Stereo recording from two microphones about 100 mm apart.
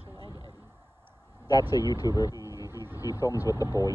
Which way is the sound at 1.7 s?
40° left (ahead or behind).